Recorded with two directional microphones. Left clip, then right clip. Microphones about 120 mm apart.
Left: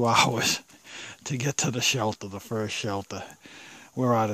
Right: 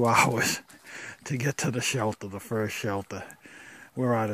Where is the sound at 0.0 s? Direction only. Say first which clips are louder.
Even; 10° left (ahead or behind).